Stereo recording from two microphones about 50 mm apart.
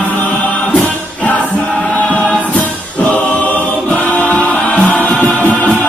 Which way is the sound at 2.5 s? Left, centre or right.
Left.